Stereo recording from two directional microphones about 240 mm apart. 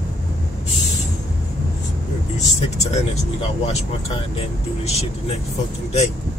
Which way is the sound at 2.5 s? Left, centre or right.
Left.